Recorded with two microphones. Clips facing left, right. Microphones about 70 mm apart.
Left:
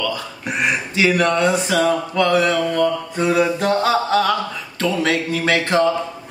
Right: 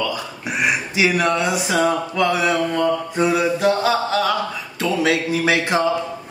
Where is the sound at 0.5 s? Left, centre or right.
Centre.